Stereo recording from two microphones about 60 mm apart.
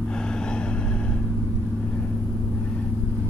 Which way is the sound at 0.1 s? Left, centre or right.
Centre.